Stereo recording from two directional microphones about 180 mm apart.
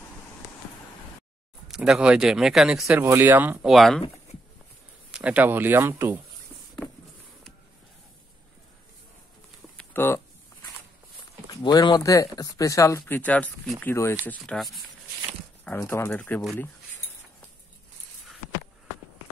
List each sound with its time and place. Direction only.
1.7 s speech: 5° right (ahead or behind)
3.7 s speech: centre (ahead or behind)
5.1 s speech: 10° right (ahead or behind)
9.8 s a sound: 10° left (ahead or behind)
11.6 s speech: 25° left (ahead or behind); by 14.8 s centre (ahead or behind)
15.6 s speech: 15° left (ahead or behind)